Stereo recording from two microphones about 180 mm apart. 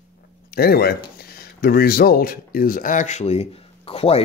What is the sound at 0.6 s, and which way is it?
Speech, 60° left (ahead or behind).